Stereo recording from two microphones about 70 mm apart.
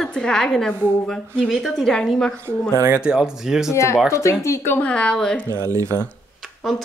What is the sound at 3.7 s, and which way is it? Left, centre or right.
Speech, left.